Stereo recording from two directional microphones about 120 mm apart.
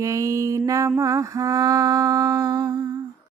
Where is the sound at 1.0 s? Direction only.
25° right (ahead or behind).